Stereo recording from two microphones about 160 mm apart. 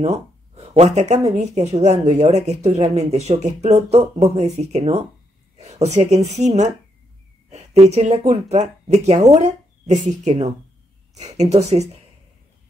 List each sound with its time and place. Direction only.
0.0 s speech: 40° right (ahead or behind)
7.8 s speech: 45° right (ahead or behind)